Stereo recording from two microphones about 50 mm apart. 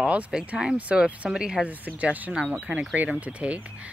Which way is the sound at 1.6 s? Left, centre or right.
Right.